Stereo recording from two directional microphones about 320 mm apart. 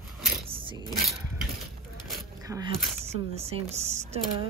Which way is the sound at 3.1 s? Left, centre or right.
Centre.